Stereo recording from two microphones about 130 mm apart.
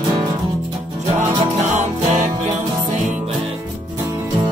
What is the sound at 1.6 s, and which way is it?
Music, 65° right (ahead or behind).